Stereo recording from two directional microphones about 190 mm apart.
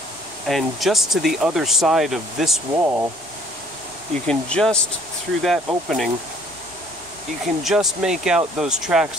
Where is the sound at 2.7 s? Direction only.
15° right (ahead or behind).